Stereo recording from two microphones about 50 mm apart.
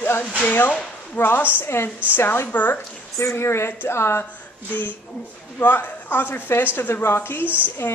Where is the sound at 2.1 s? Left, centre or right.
Left.